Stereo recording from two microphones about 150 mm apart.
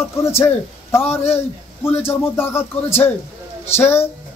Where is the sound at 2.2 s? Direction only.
15° left (ahead or behind).